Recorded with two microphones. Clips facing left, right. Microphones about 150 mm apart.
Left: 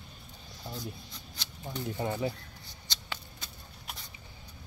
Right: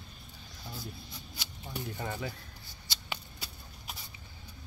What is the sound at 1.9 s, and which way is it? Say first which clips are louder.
Speech: left 7 dB; 20° left (ahead or behind).